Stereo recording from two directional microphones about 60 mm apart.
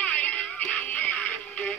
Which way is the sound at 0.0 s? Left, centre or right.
Left.